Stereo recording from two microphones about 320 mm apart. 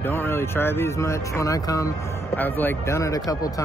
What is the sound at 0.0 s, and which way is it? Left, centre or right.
Speech, centre.